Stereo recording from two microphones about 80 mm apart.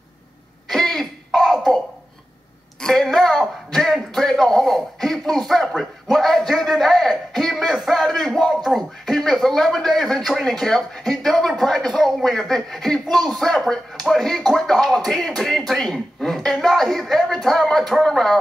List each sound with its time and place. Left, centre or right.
0.7 s throat clearing: centre
2.8 s a sound: centre
10.6 s a man's voice: centre